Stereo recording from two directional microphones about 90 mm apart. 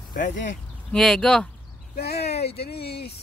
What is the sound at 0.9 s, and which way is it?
Speech, 5° left (ahead or behind).